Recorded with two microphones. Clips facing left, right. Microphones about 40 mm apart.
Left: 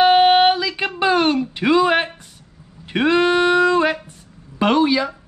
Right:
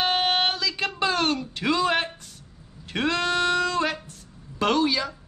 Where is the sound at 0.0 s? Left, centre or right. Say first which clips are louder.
Left 11 dB; centre.